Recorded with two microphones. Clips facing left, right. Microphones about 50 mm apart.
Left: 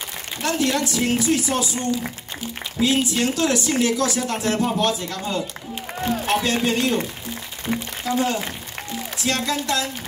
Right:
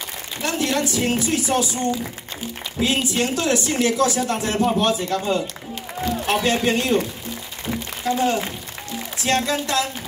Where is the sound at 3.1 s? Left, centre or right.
Right.